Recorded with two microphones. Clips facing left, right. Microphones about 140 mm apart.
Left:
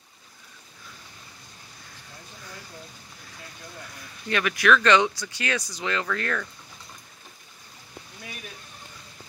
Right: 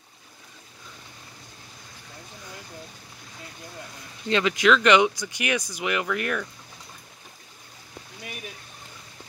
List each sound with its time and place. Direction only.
4.3 s speech: 20° right (ahead or behind)